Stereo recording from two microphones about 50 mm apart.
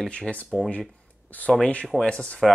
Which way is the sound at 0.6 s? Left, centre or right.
Centre.